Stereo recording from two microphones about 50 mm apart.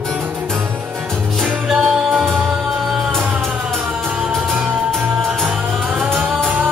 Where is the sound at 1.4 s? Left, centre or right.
Centre.